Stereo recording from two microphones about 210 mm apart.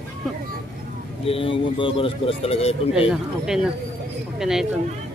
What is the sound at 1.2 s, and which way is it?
A man's voice, 25° left (ahead or behind).